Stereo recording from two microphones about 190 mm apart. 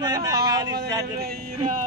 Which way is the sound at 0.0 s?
20° right (ahead or behind).